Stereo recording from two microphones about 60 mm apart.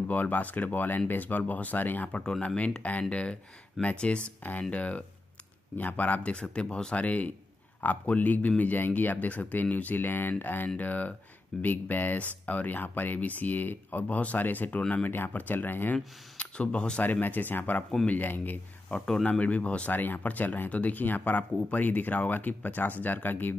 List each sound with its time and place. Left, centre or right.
0.1 s speech: left
14.8 s speech: centre
15.0 s speech: left
16.3 s speech: centre
17.0 s speech: left
18.9 s speech: centre
19.2 s speech: left